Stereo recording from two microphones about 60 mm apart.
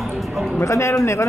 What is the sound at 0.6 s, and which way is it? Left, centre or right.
Speech, left.